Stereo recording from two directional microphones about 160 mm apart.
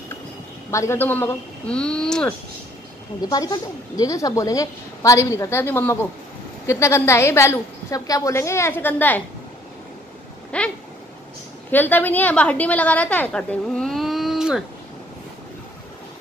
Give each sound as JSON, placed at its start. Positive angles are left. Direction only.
{"t": 0.7, "sound": "a woman's voice", "side_deg": 15}
{"t": 3.2, "sound": "a woman's voice", "side_deg": 25}
{"t": 10.5, "sound": "a woman's voice", "side_deg": 5}
{"t": 11.7, "sound": "a woman's voice", "side_deg": 10}